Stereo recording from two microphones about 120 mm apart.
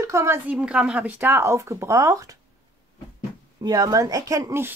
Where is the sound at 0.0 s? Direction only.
25° right (ahead or behind).